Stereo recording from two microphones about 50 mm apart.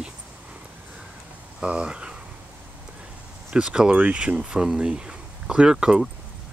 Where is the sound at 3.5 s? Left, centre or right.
Centre.